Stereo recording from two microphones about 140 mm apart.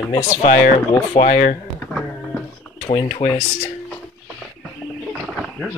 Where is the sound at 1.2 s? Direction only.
85° left.